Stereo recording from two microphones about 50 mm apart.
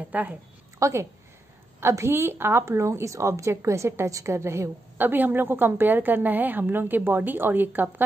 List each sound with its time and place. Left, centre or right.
0.1 s a woman's voice: right
0.7 s speech: right
1.8 s a woman's voice: right
2.6 s a woman's voice: right
4.9 s a woman's voice: right